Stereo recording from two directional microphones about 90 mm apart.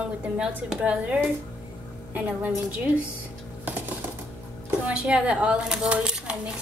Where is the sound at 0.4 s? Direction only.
10° right (ahead or behind).